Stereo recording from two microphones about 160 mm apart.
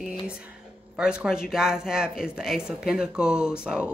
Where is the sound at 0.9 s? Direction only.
5° right (ahead or behind).